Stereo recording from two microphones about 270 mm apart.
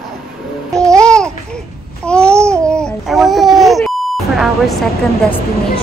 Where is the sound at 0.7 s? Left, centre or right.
Centre.